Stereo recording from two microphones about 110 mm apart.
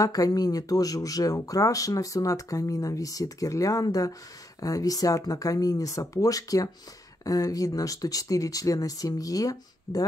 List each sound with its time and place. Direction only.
0.0 s speech: 35° left (ahead or behind)